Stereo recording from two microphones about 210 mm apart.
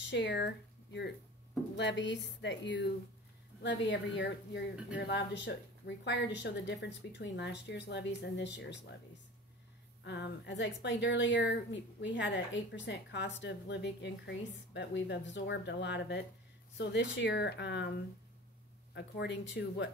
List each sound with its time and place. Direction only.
0.0 s speech: 55° left (ahead or behind)
1.8 s a woman's voice: 55° left (ahead or behind)
10.0 s a woman's voice: 55° left (ahead or behind)
18.9 s a woman's voice: 55° left (ahead or behind)